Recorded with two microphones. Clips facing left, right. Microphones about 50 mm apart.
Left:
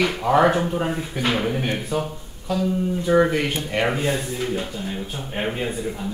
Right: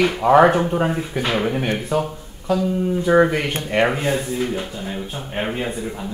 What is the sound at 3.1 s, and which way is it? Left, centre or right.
A man's voice, right.